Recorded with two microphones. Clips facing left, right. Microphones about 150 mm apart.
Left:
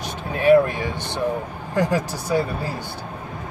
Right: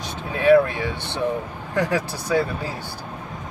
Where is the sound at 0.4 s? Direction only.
15° left (ahead or behind).